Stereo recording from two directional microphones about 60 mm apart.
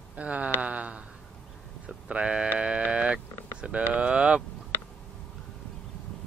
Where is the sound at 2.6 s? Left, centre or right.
Centre.